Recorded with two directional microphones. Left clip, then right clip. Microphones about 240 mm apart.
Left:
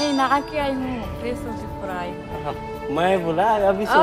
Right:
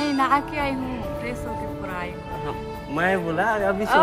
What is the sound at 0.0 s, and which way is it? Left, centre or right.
Speech, left.